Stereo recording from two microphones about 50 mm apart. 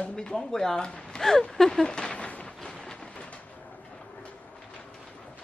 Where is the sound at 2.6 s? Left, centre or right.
Centre.